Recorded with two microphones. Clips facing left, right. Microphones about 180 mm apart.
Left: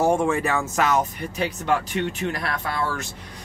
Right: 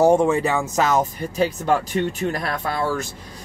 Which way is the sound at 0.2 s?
20° right (ahead or behind).